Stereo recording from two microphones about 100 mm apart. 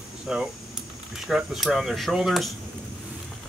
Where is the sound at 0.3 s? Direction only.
5° right (ahead or behind).